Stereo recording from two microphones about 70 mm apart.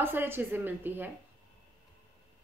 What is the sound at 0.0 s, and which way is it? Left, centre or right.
A woman's voice, right.